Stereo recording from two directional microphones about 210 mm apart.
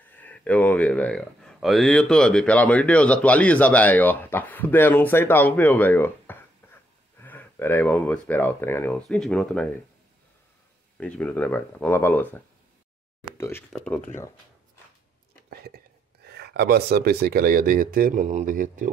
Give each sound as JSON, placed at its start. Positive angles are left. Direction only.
{"t": 0.1, "sound": "speech", "side_deg": 5}
{"t": 6.6, "sound": "wheeze", "side_deg": 10}
{"t": 7.2, "sound": "speech", "side_deg": 10}
{"t": 11.0, "sound": "speech", "side_deg": 5}
{"t": 15.6, "sound": "speech", "side_deg": -50}